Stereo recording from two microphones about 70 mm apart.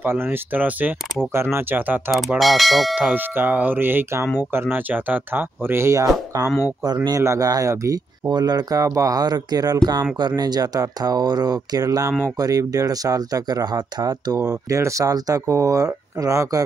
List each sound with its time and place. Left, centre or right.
0.0 s speech: right
1.3 s speech: right
2.1 s speech: centre
3.0 s speech: right
7.2 s speech: right
8.3 s speech: right
14.8 s speech: right